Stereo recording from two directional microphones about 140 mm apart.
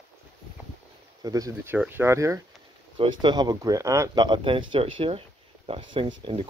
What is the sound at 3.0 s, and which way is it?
Speech, 35° right (ahead or behind).